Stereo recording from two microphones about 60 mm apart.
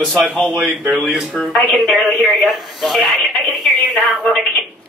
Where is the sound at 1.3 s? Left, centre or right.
Left.